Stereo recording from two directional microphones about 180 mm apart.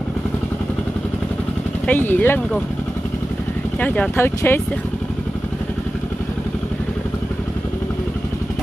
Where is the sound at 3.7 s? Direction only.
10° left (ahead or behind).